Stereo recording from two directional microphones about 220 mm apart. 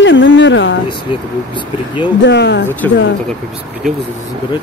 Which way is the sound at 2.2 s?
55° left (ahead or behind).